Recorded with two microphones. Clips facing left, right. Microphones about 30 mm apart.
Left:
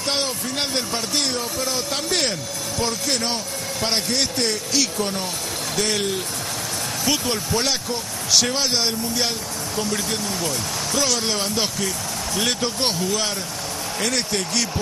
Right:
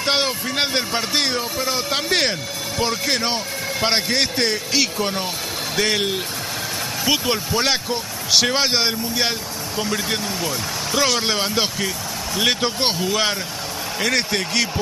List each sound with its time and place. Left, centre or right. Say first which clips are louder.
0.0 s speech: right 4 dB; right